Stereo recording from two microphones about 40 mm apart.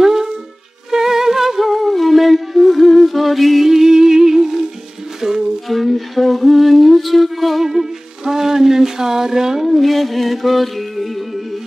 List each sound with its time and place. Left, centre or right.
0.0 s music: centre
3.6 s music: centre
5.7 s humming: centre
7.6 s music: centre
9.7 s music: centre